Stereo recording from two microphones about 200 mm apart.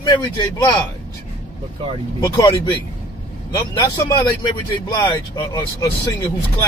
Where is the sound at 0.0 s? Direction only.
20° left (ahead or behind).